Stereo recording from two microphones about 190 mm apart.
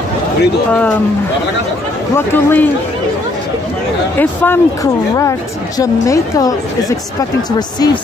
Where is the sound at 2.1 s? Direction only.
10° left (ahead or behind).